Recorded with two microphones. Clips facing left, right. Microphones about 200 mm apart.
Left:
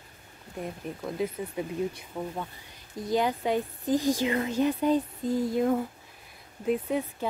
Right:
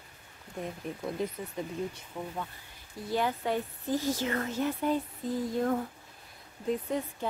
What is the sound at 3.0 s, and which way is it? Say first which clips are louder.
Speech: left 4 dB; 15° left (ahead or behind).